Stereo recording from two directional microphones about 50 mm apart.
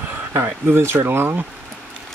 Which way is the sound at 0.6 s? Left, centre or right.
Right.